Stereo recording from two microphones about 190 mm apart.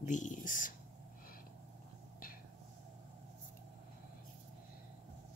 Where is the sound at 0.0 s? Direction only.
40° left (ahead or behind).